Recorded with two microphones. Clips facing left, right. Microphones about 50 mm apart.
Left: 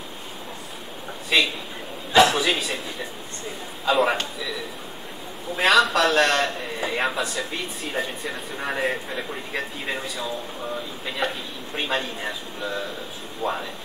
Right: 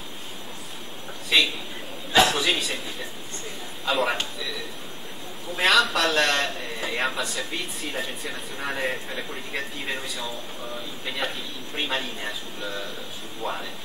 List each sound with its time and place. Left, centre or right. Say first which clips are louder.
1.3 s a man's voice: left 1 dB; centre
3.8 s a man's voice: left 4 dB; centre
5.6 s a man's voice: left 3 dB; centre